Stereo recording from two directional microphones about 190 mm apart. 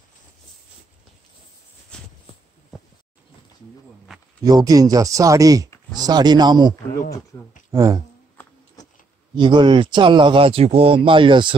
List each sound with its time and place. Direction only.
1.9 s a sound: 5° left (ahead or behind)
4.5 s speech: 20° right (ahead or behind)
7.7 s speech: 15° right (ahead or behind)
9.4 s speech: 25° right (ahead or behind)